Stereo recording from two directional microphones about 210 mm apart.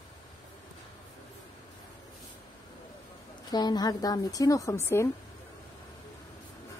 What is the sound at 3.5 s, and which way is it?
A woman's voice, 20° left (ahead or behind).